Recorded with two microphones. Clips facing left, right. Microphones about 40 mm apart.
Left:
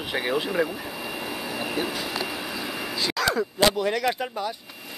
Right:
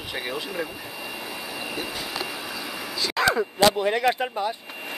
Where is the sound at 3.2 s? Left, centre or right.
Centre.